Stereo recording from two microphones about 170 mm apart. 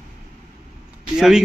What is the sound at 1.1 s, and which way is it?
Speech, 5° right (ahead or behind).